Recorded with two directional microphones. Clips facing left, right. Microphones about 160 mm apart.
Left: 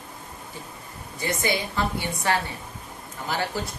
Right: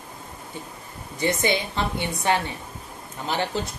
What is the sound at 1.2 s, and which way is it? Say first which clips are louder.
A woman's voice: right 3 dB; 20° right (ahead or behind).